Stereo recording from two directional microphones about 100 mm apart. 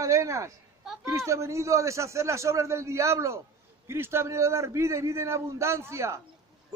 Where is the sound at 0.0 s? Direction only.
30° right (ahead or behind).